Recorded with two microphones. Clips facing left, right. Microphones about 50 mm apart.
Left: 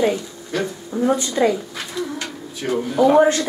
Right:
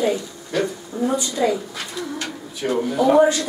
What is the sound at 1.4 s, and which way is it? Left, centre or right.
Speech, centre.